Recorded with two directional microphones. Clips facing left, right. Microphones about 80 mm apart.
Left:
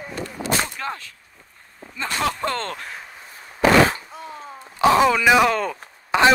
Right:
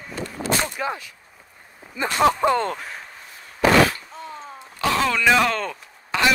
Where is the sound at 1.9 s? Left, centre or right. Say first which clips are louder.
Right 6 dB; centre.